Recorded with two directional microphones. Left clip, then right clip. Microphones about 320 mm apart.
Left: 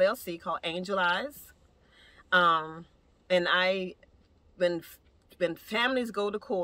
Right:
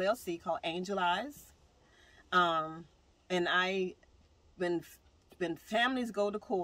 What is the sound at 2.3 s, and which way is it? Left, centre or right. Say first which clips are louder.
Speech: left 6 dB; centre.